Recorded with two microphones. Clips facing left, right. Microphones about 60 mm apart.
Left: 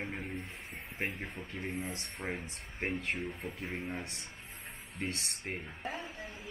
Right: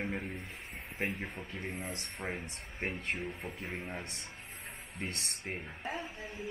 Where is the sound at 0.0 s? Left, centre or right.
Centre.